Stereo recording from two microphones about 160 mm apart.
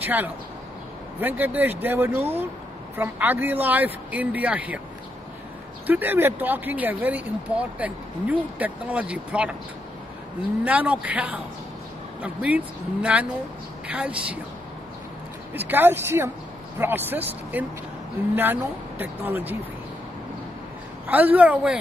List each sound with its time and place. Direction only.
0.0 s speech: 10° right (ahead or behind)
5.9 s speech: 10° right (ahead or behind)
10.6 s speech: 10° right (ahead or behind)
15.5 s speech: 10° right (ahead or behind)
21.1 s speech: 10° right (ahead or behind)